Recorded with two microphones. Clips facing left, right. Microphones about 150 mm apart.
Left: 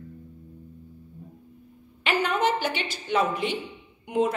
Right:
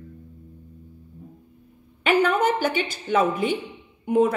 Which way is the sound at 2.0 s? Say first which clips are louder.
Right 5 dB; 50° right (ahead or behind).